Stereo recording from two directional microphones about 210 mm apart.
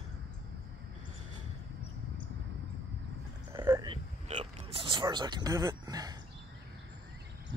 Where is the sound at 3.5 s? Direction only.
20° right (ahead or behind).